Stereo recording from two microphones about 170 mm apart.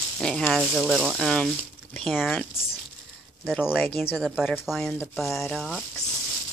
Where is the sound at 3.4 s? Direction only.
Centre (ahead or behind).